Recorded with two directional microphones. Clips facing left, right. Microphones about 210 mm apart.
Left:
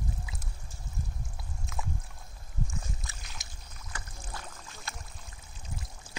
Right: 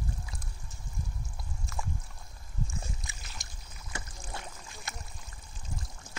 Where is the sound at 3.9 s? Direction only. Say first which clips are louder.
Right 2 dB; 25° right (ahead or behind).